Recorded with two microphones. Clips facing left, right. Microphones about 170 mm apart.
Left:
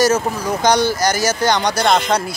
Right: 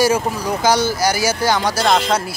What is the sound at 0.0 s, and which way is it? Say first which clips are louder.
Speech: left 1 dB; 10° right (ahead or behind).